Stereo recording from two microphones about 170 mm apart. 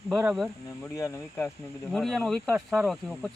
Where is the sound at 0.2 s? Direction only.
5° right (ahead or behind).